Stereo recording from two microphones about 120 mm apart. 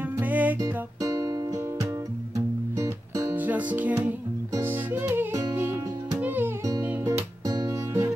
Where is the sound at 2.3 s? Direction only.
25° right (ahead or behind).